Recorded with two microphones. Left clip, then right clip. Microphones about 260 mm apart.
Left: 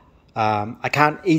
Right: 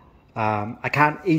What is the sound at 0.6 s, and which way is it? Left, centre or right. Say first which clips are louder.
Speech: left 2 dB; left.